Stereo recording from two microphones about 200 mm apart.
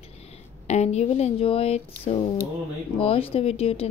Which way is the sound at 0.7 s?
35° left (ahead or behind).